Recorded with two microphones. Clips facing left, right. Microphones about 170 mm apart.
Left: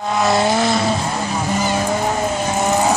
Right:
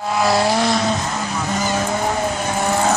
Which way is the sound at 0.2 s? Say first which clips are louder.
Left 1 dB; centre (ahead or behind).